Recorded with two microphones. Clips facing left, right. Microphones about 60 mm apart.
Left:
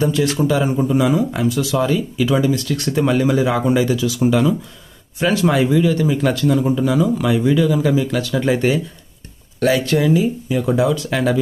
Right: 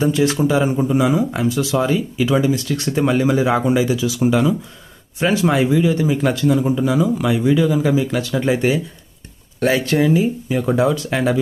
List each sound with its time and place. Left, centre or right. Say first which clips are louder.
0.0 s speech: right 1 dB; right
8.5 s speech: even; centre
9.6 s speech: even; right